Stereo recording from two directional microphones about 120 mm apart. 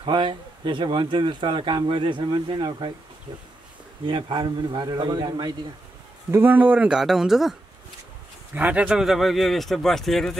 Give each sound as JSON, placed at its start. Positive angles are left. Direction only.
{"t": 0.0, "sound": "speech", "side_deg": -40}
{"t": 4.0, "sound": "a man's voice", "side_deg": -40}
{"t": 6.3, "sound": "speech", "side_deg": -15}
{"t": 8.5, "sound": "speech", "side_deg": -10}